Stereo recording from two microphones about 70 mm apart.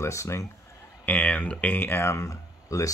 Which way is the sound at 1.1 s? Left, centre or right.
Left.